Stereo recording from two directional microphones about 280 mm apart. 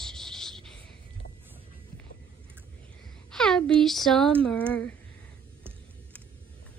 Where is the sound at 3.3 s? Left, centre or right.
Centre.